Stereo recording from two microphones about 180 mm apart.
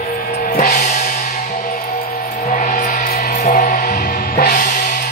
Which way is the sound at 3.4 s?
45° left (ahead or behind).